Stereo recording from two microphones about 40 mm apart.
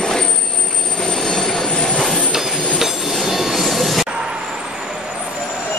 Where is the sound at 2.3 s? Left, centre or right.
Centre.